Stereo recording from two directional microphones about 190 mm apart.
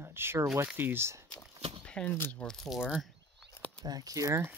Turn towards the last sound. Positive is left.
turn(degrees=-15)  # may be behind; listen again after turning